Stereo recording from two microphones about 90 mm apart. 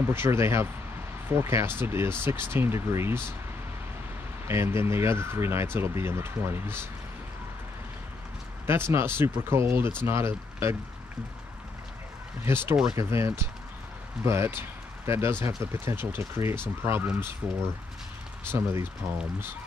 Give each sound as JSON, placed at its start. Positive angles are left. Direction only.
{"t": 0.0, "sound": "speech", "side_deg": -25}
{"t": 4.5, "sound": "speech", "side_deg": -30}
{"t": 8.6, "sound": "speech", "side_deg": -25}
{"t": 12.4, "sound": "speech", "side_deg": -25}
{"t": 18.5, "sound": "speech", "side_deg": -30}